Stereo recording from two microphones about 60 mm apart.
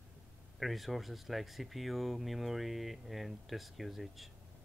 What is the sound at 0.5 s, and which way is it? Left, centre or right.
Speech, centre.